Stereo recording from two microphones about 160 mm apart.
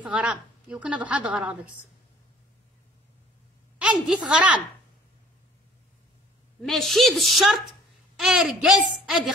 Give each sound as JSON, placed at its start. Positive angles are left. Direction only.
{"t": 0.0, "sound": "a woman's voice", "side_deg": -5}
{"t": 3.7, "sound": "a woman's voice", "side_deg": -5}
{"t": 6.6, "sound": "a woman's voice", "side_deg": 0}